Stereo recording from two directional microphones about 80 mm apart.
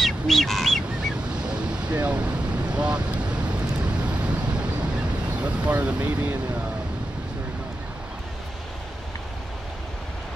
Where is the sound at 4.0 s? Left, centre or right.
Centre.